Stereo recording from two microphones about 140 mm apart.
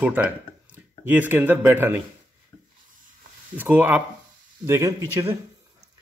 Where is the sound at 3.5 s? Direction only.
15° right (ahead or behind).